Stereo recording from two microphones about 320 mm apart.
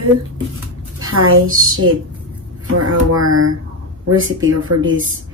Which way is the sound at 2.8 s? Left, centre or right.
Right.